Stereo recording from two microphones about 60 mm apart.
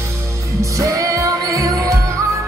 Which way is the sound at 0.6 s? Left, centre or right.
Right.